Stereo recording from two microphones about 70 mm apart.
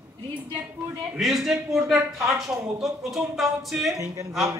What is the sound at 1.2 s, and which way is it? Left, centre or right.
A man's voice, centre.